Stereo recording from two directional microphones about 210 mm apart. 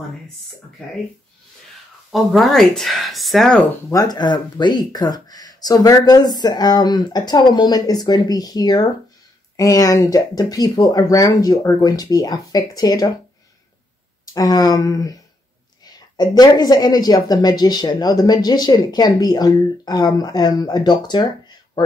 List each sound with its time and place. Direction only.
2.0 s speech: centre (ahead or behind)
3.9 s speech: 20° left (ahead or behind)
14.2 s speech: 15° left (ahead or behind)